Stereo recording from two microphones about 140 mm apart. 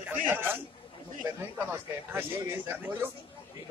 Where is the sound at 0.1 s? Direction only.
15° right (ahead or behind).